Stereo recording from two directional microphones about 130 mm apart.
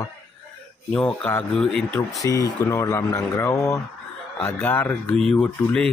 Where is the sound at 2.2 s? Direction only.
25° left (ahead or behind); by 5.8 s 5° left (ahead or behind).